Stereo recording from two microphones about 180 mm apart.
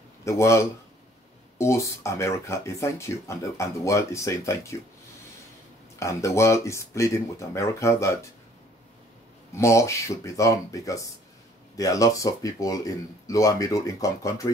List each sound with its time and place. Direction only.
0.2 s speech: 15° left (ahead or behind)
5.9 s speech: 15° left (ahead or behind)
9.6 s speech: 15° left (ahead or behind)